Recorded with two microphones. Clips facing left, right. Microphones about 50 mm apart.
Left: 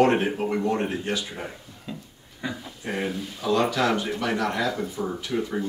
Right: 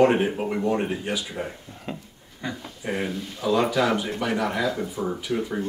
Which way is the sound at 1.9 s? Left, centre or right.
Right.